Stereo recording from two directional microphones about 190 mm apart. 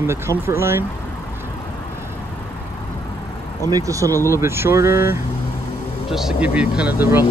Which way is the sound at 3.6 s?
20° right (ahead or behind).